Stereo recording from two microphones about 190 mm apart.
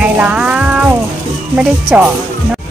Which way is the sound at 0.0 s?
5° right (ahead or behind).